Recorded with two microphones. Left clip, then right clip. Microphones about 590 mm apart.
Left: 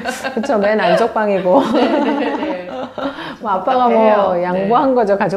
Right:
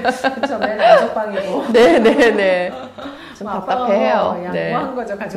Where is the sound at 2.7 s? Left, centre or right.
Left.